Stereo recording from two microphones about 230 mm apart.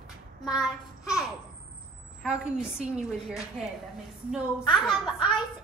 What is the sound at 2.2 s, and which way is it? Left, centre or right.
A woman's voice, centre.